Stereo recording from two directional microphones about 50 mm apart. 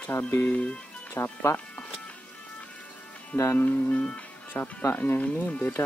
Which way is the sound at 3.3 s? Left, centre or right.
Left.